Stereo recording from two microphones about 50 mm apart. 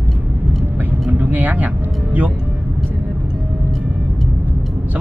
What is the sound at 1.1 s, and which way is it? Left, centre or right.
Speech, right.